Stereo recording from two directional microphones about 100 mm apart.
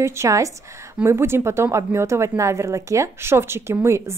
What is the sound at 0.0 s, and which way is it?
Speech, 30° right (ahead or behind).